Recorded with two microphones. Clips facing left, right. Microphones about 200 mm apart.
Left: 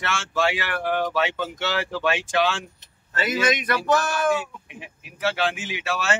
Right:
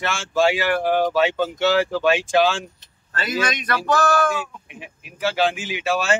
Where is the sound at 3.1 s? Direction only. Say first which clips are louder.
Left 2 dB; 20° left (ahead or behind).